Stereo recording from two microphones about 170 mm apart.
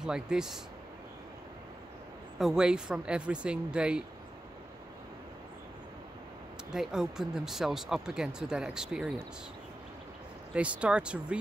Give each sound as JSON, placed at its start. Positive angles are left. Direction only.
{"t": 0.0, "sound": "speech", "side_deg": -5}
{"t": 2.3, "sound": "speech", "side_deg": -5}
{"t": 6.7, "sound": "speech", "side_deg": -5}
{"t": 10.5, "sound": "speech", "side_deg": -5}